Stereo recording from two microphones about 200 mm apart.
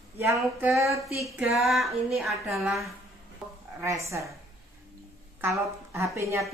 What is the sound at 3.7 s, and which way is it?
Speech, 15° right (ahead or behind).